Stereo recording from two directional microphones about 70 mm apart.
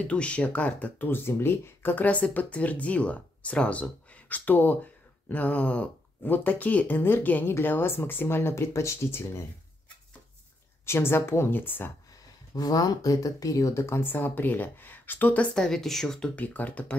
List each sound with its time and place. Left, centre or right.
0.0 s speech: centre; by 9.5 s left
10.9 s speech: left
12.5 s speech: left
15.5 s speech: centre
16.3 s speech: left